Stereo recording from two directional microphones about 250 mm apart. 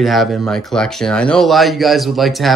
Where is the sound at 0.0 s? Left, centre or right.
Centre.